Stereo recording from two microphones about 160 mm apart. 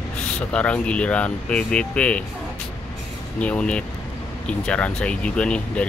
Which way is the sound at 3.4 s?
5° left (ahead or behind).